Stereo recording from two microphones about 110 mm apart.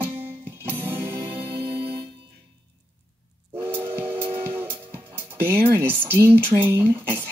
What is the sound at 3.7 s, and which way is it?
Steam whistle, 20° right (ahead or behind).